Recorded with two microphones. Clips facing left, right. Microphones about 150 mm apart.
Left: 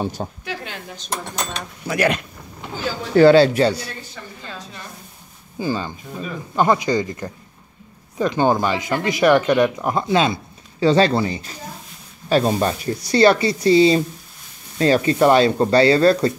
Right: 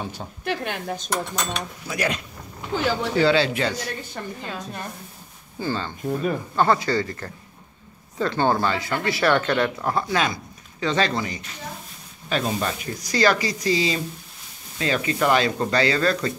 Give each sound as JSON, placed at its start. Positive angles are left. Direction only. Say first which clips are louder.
{"t": 0.0, "sound": "speech", "louder": "left 7 dB", "side_deg": 40}
{"t": 0.5, "sound": "speech", "louder": "right 4 dB", "side_deg": -55}
{"t": 1.9, "sound": "speech", "louder": "left 7 dB", "side_deg": 60}
{"t": 2.7, "sound": "speech", "louder": "right 4 dB", "side_deg": -70}
{"t": 3.2, "sound": "speech", "louder": "left 10 dB", "side_deg": 45}
{"t": 5.6, "sound": "speech", "louder": "left 3 dB", "side_deg": 10}